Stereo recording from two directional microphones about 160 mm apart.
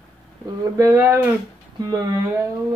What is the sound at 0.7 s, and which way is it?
Speech, 15° right (ahead or behind).